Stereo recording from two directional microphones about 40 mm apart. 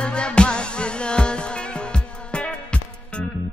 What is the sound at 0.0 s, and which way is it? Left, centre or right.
Music, left.